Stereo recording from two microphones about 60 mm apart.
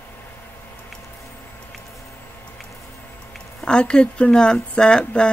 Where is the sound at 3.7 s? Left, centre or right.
Centre.